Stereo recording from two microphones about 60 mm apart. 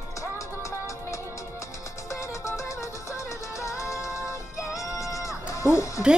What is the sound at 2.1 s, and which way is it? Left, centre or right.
Music, left.